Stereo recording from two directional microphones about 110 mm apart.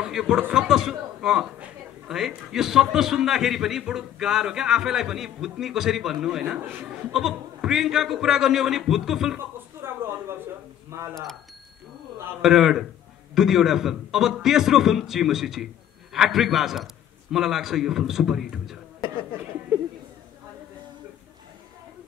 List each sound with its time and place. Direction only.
0.0 s a man's voice: 5° right (ahead or behind)
9.8 s a sound: 25° right (ahead or behind)
10.9 s speech: 25° right (ahead or behind)
12.4 s a man's voice: 5° right (ahead or behind)